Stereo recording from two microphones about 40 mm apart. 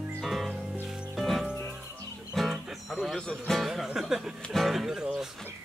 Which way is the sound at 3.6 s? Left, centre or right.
Centre.